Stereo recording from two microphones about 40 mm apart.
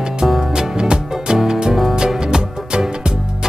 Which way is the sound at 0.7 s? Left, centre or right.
Right.